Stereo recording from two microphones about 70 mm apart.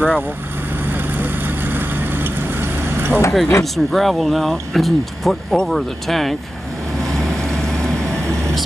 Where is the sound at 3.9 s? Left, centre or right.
Centre.